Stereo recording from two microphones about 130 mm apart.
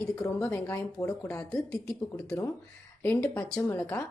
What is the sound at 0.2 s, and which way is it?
Speech, 25° left (ahead or behind).